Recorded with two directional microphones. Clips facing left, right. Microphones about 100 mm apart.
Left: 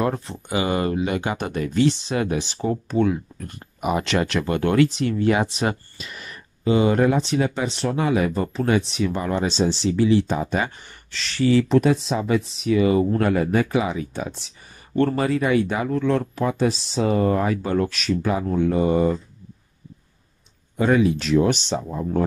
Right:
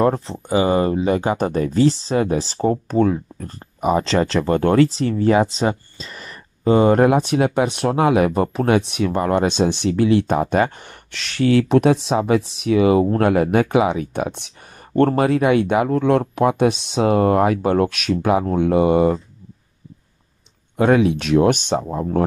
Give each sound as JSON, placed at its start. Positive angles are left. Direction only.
{"t": 0.0, "sound": "speech", "side_deg": -30}
{"t": 7.1, "sound": "speech", "side_deg": -65}
{"t": 20.7, "sound": "speech", "side_deg": -75}